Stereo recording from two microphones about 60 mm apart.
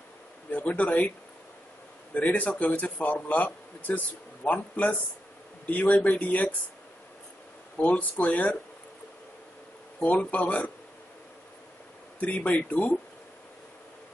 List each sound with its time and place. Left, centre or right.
0.5 s a man's voice: left
2.1 s a man's voice: left
7.7 s a man's voice: left
10.0 s a man's voice: left
12.2 s a man's voice: left